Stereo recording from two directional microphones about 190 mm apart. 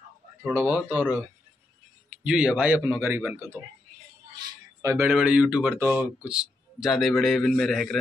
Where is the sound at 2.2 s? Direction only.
5° right (ahead or behind).